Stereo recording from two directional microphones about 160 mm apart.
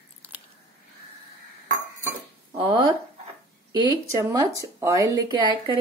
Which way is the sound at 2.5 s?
30° right (ahead or behind).